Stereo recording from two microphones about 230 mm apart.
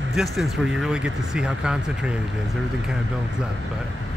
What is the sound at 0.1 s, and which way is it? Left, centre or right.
Speech, centre.